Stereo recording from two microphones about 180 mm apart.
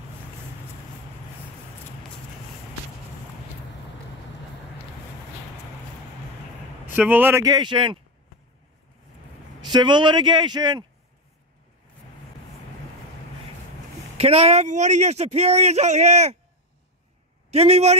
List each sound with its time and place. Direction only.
7.0 s a man's voice: 10° right (ahead or behind); by 8.0 s 25° right (ahead or behind)
9.6 s a man's voice: 25° right (ahead or behind)
14.1 s speech: 35° right (ahead or behind)
17.5 s speech: 35° right (ahead or behind)